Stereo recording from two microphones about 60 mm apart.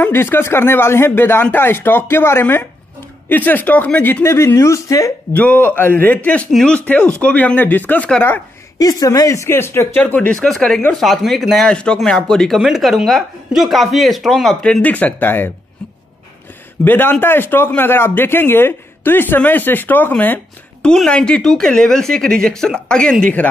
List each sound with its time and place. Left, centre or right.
0.0 s speech: left
4.2 s speech: left
5.3 s speech: left
6.5 s speech: centre
7.1 s speech: left
8.7 s speech: left
9.5 s speech: left
10.1 s speech: left
10.4 s speech: centre
11.6 s speech: centre
14.6 s speech: left
16.8 s speech: left
20.8 s speech: centre